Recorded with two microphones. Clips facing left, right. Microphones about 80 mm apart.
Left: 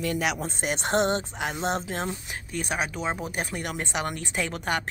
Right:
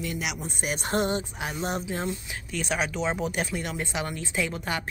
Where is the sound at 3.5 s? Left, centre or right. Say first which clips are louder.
Even; left.